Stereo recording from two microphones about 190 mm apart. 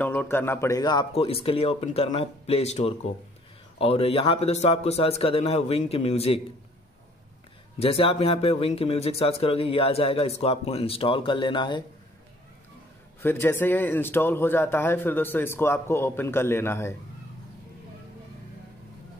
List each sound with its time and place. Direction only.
0.0 s speech: 10° left (ahead or behind); by 6.4 s 30° left (ahead or behind)
7.8 s speech: 30° left (ahead or behind)
13.2 s a man's voice: 10° left (ahead or behind)